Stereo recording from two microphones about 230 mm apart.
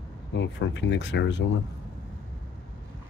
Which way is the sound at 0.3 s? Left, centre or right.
Left.